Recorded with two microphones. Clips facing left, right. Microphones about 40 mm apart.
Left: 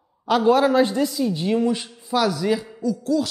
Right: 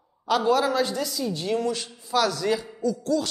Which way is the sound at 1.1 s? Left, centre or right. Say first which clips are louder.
Left 5 dB; centre.